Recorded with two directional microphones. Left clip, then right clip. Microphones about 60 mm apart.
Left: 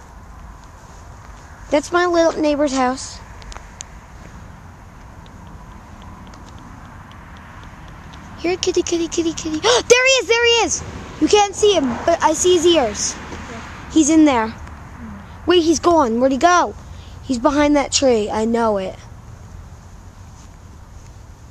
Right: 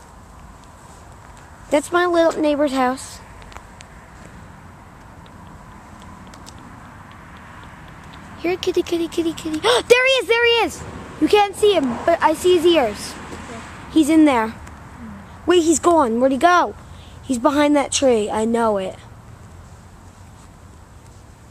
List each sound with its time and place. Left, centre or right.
2.0 s speech: left
8.1 s speech: left
14.2 s speech: centre
15.8 s a woman's voice: centre
16.2 s speech: left
17.3 s a woman's voice: centre